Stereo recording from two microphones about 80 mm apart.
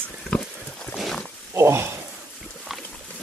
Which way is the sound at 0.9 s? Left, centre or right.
Centre.